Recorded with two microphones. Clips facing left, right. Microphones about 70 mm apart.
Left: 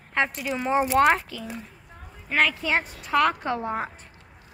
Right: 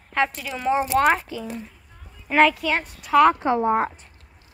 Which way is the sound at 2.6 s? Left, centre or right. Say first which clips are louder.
Right 1 dB; centre.